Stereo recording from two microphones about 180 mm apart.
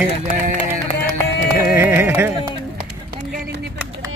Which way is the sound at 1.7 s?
10° right (ahead or behind).